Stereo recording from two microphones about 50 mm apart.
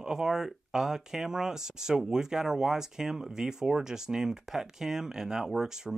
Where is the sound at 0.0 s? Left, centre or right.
Centre.